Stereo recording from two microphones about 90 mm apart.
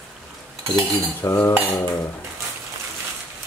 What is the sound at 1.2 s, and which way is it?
Cutlery, 25° left (ahead or behind).